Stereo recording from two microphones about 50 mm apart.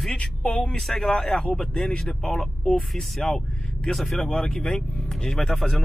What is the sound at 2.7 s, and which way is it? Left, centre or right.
Speech, centre.